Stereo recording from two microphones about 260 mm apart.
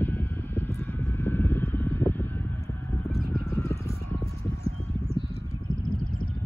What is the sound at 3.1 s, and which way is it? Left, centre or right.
Vehicle, centre.